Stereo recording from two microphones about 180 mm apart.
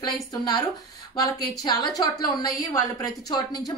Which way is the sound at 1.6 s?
20° left (ahead or behind).